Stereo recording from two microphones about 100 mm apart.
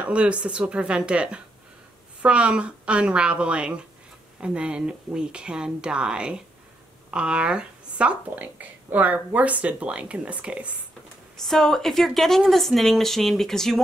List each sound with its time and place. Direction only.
0.0 s speech: 10° right (ahead or behind)
11.4 s a woman's voice: 5° left (ahead or behind)